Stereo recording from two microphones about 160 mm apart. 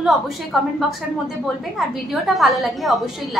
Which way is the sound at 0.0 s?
Centre (ahead or behind).